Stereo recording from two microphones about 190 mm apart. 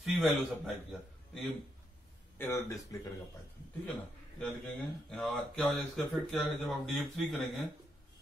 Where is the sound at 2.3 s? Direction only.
15° left (ahead or behind).